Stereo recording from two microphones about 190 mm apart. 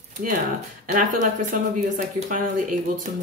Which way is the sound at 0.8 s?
45° right (ahead or behind).